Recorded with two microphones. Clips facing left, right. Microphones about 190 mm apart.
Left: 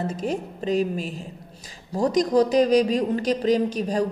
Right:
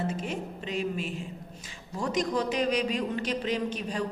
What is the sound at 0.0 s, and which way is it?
A woman's voice, 40° left (ahead or behind).